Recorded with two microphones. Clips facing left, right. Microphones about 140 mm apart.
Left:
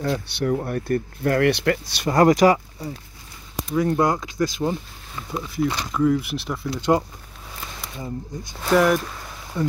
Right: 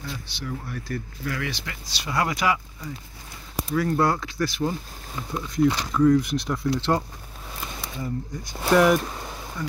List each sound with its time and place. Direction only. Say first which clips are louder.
0.0 s speech: left 11 dB; 60° left (ahead or behind); by 2.9 s 40° left (ahead or behind)
3.7 s speech: left 2 dB; 20° left (ahead or behind)
5.5 s speech: right 3 dB; 5° left (ahead or behind)
6.8 s speech: left 4 dB; 15° left (ahead or behind)
8.7 s speech: even; 5° right (ahead or behind)
9.6 s speech: left 9 dB; 20° left (ahead or behind)